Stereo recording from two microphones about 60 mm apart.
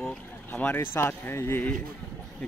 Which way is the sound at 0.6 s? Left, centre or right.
Left.